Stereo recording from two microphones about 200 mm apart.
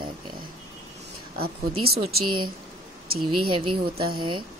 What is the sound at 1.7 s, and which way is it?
Speech, 90° right.